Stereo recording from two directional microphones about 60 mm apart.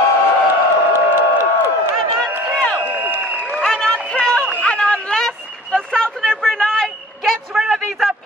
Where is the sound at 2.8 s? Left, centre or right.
Right.